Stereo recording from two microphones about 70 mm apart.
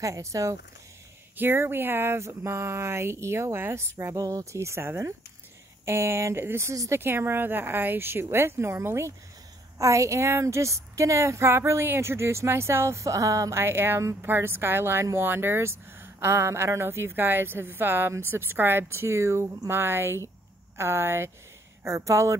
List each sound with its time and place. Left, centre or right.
0.0 s a woman's voice: right
1.3 s speech: right
4.2 s a woman's voice: right
4.6 s a woman's voice: right
13.6 s a woman's voice: right